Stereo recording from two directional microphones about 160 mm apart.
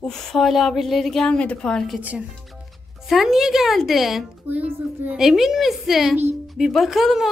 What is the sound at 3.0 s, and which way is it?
Speech, centre (ahead or behind).